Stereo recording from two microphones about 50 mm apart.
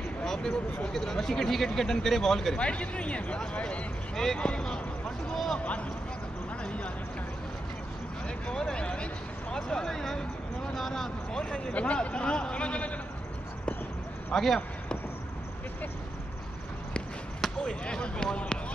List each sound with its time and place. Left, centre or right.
0.2 s a sound: centre
0.9 s speech: centre
2.5 s a man's voice: left
4.1 s speech: centre
4.4 s a sound: centre
5.6 s a man's voice: left
6.6 s a sound: left
8.5 s speech: centre
11.3 s a man's voice: centre
14.3 s speech: centre
17.6 s a man's voice: centre